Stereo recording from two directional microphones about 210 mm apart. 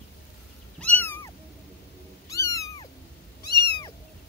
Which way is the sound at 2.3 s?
15° left (ahead or behind).